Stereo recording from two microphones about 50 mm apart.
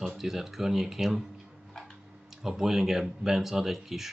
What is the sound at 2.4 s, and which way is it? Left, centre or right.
Speech, centre.